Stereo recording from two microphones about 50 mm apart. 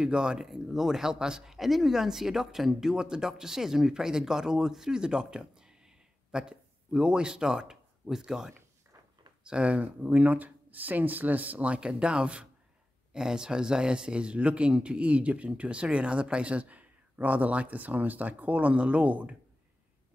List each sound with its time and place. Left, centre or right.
0.0 s speech: centre